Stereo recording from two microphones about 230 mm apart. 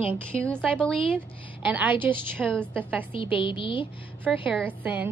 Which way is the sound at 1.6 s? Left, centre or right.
Centre.